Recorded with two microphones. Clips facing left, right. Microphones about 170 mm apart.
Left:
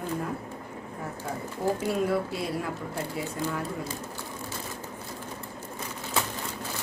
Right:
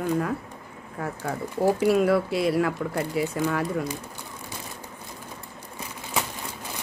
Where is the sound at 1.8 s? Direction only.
85° right.